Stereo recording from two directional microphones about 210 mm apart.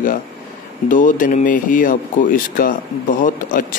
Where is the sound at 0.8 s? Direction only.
40° left (ahead or behind).